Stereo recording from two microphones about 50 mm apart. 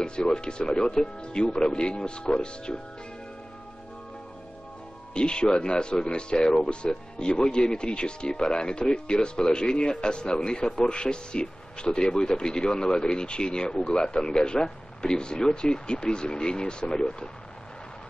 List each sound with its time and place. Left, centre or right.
0.0 s speech: centre
5.1 s speech: centre